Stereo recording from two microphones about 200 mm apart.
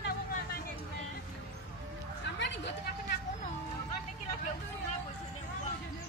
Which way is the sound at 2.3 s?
65° left (ahead or behind).